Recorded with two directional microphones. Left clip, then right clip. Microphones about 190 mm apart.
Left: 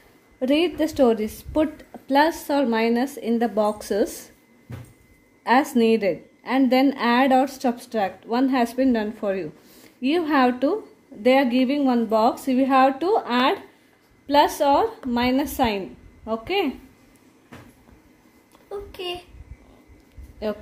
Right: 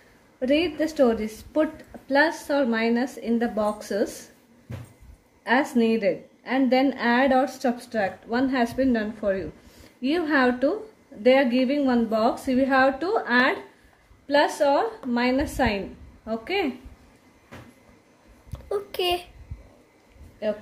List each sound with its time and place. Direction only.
0.4 s a woman's voice: 25° left (ahead or behind)
5.4 s a woman's voice: 30° left (ahead or behind)
18.5 s a sound: 35° right (ahead or behind)
20.4 s speech: 30° left (ahead or behind)